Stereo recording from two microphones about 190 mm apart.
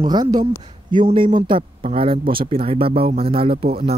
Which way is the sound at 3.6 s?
55° right (ahead or behind).